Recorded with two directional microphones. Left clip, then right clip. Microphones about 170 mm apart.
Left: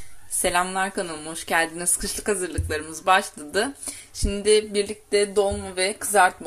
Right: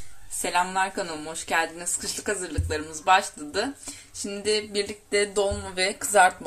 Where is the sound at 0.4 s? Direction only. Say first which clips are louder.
Left 1 dB; 20° left (ahead or behind).